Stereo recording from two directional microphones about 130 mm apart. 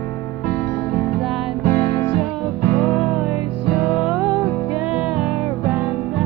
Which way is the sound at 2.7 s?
5° left (ahead or behind).